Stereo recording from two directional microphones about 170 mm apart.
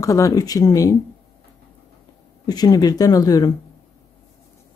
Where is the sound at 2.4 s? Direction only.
20° left (ahead or behind).